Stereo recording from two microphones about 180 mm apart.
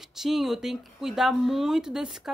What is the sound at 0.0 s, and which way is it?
A woman's voice, centre (ahead or behind).